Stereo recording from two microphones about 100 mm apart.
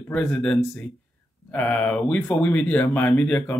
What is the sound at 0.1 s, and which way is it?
Speech, 10° left (ahead or behind).